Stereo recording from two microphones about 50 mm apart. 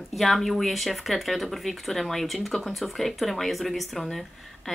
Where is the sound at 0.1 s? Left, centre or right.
Centre.